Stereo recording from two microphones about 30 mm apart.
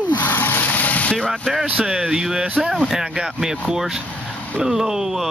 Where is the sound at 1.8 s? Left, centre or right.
Right.